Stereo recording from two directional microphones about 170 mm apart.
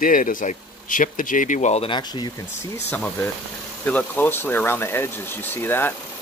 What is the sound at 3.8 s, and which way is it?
Speech, 10° left (ahead or behind).